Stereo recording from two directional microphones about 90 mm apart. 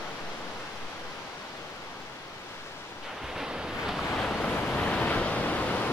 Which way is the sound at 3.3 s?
5° right (ahead or behind).